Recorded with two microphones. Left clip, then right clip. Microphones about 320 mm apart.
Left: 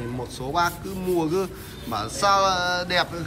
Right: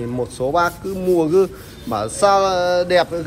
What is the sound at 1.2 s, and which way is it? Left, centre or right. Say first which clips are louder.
Speech: right 10 dB; centre.